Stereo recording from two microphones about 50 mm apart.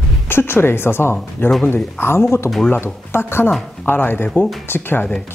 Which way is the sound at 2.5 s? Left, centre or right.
Centre.